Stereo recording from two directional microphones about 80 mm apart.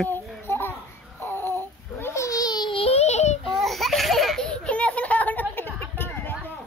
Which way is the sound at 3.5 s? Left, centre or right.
Centre.